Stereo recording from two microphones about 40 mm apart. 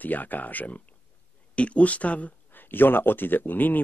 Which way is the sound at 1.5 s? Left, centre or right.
Left.